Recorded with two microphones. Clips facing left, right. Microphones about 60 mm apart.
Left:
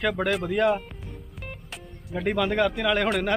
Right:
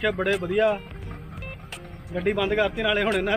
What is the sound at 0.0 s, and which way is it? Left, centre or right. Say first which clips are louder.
Speech: right 1 dB; centre.